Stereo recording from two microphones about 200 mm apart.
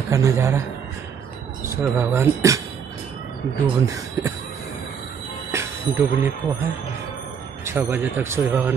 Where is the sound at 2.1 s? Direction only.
15° right (ahead or behind).